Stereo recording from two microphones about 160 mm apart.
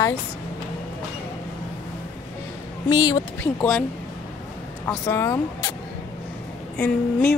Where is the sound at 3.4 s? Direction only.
10° left (ahead or behind).